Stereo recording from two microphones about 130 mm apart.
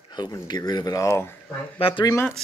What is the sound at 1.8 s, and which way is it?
Speech, 45° left (ahead or behind).